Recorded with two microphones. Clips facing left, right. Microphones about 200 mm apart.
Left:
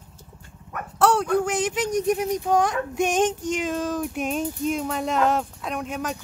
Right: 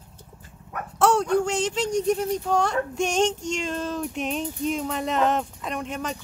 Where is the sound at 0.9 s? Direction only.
Centre (ahead or behind).